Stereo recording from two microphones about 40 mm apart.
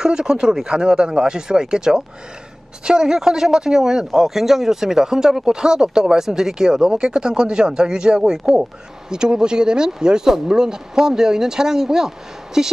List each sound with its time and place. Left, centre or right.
0.0 s speech: centre